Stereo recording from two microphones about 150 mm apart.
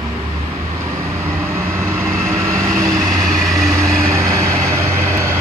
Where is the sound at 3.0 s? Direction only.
Centre (ahead or behind).